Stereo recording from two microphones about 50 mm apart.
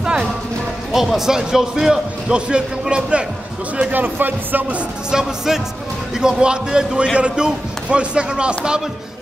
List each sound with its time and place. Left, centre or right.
0.0 s music: centre
0.9 s a man's voice: centre
2.3 s speech: centre
3.9 s speech: right
5.1 s a man's voice: centre